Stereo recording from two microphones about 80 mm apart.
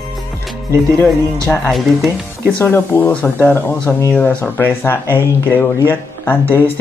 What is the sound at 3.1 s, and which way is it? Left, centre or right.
Speech, centre.